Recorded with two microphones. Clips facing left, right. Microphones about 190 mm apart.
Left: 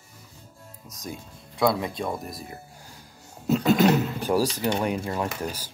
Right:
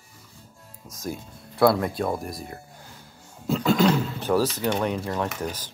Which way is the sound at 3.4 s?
20° left (ahead or behind).